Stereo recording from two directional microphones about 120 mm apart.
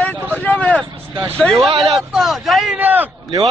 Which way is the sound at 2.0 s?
Centre (ahead or behind).